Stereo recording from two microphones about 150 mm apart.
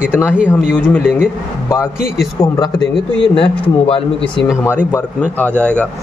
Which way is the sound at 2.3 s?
25° left (ahead or behind).